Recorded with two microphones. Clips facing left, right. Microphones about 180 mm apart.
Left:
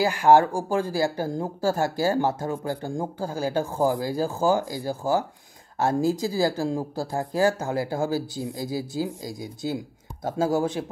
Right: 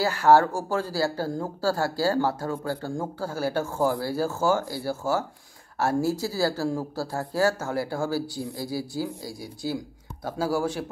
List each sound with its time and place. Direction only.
0.0 s speech: 15° left (ahead or behind)